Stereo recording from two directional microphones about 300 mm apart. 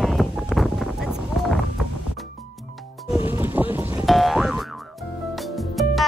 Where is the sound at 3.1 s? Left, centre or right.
Centre.